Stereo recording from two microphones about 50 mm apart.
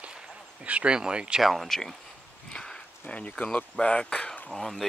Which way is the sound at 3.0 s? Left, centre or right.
Left.